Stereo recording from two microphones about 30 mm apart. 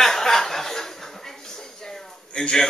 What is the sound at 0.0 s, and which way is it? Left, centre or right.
Chuckle, centre.